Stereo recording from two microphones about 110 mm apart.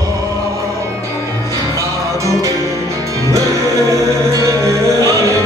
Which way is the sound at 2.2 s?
30° right (ahead or behind).